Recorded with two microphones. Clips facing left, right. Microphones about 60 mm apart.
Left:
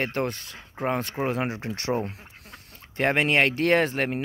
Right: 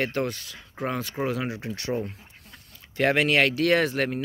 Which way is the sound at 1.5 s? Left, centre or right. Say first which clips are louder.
Left 2 dB; left.